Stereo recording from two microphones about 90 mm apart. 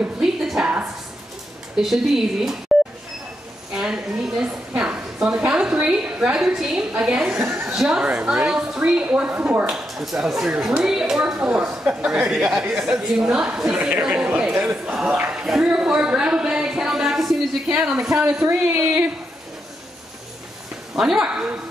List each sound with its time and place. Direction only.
0.2 s a sound: 5° right (ahead or behind)
1.8 s speech: 5° right (ahead or behind)
3.7 s a sound: 10° right (ahead or behind)
6.9 s speech: 10° right (ahead or behind)
9.7 s a man's voice: 5° right (ahead or behind)
18.2 s speech: 20° right (ahead or behind)
20.9 s speech: 5° right (ahead or behind)